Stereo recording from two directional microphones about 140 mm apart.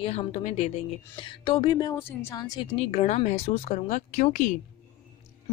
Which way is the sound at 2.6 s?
45° left (ahead or behind).